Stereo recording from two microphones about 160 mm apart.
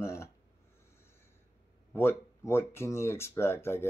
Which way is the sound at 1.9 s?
15° left (ahead or behind).